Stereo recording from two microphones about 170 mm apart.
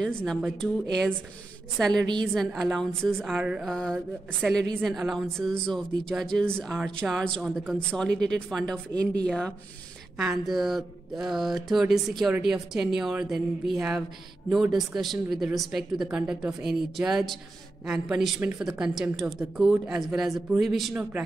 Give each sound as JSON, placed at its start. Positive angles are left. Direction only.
{"t": 0.0, "sound": "speech", "side_deg": 5}
{"t": 2.3, "sound": "speech", "side_deg": 0}